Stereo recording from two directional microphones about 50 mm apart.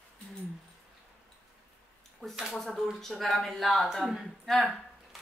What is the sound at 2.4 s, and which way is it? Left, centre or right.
Speech, centre.